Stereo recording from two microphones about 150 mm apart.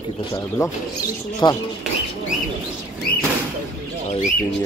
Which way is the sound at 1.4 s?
30° left (ahead or behind).